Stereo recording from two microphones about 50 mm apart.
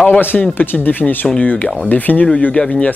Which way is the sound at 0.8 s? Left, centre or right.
Left.